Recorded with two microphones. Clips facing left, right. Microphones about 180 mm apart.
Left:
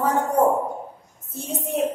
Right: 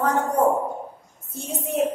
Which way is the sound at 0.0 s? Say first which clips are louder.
Left 1 dB; 10° left (ahead or behind).